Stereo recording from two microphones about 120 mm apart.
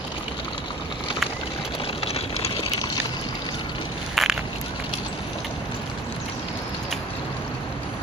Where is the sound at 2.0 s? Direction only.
55° left (ahead or behind).